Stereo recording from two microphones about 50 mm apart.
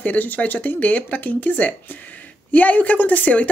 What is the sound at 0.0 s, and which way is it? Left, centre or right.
Speech, left.